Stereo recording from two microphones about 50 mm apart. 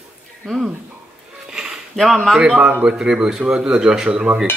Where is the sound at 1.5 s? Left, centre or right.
Centre.